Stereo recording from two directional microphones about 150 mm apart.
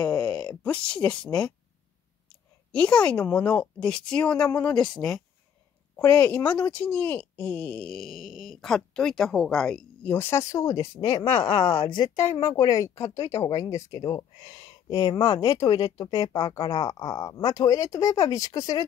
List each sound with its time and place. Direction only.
0.4 s a woman's voice: 5° left (ahead or behind)
10.1 s speech: 15° left (ahead or behind)
11.2 s speech: 35° left (ahead or behind)